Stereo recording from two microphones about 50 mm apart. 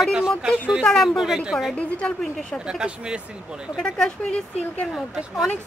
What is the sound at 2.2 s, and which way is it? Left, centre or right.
Speech, centre.